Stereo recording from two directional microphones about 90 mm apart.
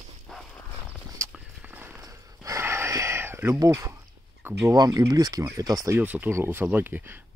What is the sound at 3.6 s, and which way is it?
Speech, 35° right (ahead or behind).